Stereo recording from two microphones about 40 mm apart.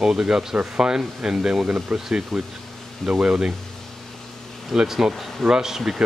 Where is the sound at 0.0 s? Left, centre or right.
Centre.